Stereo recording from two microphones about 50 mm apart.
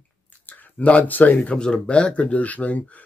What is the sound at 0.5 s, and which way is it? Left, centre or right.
Speech, left.